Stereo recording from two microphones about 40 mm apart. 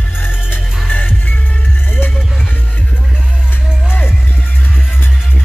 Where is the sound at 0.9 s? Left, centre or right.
Left.